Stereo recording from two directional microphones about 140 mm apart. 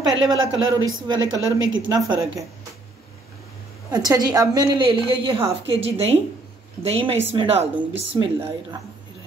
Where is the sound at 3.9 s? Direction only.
30° right (ahead or behind).